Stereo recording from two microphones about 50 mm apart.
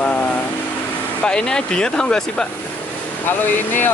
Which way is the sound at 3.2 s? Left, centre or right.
Left.